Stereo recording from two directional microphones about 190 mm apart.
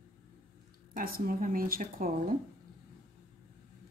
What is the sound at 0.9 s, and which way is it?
Speech, 50° right (ahead or behind).